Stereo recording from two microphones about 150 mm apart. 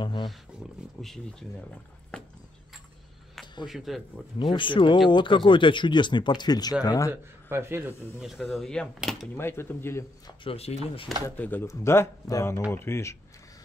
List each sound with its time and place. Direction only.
0.0 s speech: 30° left (ahead or behind)
1.0 s speech: centre (ahead or behind)
2.1 s a sound: 5° left (ahead or behind)
3.6 s speech: centre (ahead or behind)
4.4 s speech: 35° left (ahead or behind)
7.1 s speech: 15° right (ahead or behind)
7.9 s speech: 15° left (ahead or behind)
8.5 s speech: centre (ahead or behind)
9.4 s speech: 15° left (ahead or behind)
10.4 s speech: 40° left (ahead or behind)
11.2 s speech: 10° left (ahead or behind)